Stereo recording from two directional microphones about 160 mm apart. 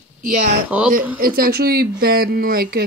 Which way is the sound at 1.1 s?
65° right (ahead or behind).